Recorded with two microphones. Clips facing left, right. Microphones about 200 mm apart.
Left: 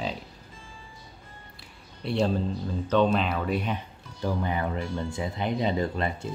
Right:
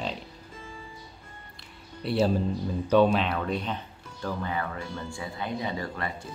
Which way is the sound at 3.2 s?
5° left (ahead or behind).